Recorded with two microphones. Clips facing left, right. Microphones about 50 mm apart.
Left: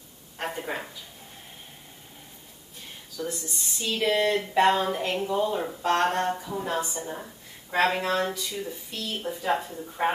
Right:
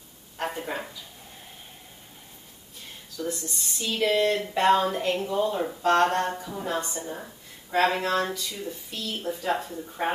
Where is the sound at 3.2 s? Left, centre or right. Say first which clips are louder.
Right 1 dB; centre.